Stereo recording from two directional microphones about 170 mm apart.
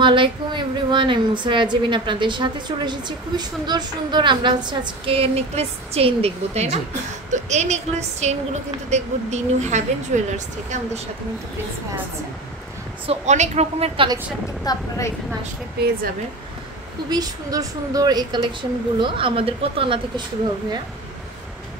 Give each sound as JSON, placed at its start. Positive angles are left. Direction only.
{"t": 0.0, "sound": "a woman's voice", "side_deg": -30}
{"t": 13.0, "sound": "a woman's voice", "side_deg": -40}
{"t": 14.6, "sound": "speech", "side_deg": 20}
{"t": 17.1, "sound": "a woman's voice", "side_deg": -20}